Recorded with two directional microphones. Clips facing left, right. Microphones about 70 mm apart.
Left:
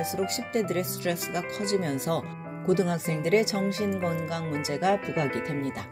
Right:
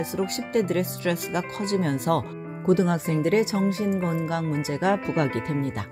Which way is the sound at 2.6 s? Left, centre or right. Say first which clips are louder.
Right 3 dB; right.